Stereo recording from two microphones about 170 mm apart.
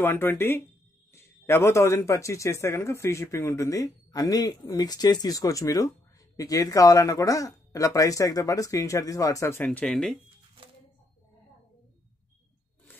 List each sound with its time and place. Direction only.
0.0 s speech: 15° left (ahead or behind)
9.7 s speech: 5° left (ahead or behind)